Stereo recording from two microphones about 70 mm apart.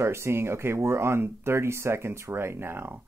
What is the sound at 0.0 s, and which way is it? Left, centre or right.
Speech, right.